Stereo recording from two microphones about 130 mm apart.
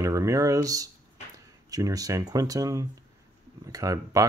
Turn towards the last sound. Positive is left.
turn(degrees=-25)  # may be behind; listen again after turning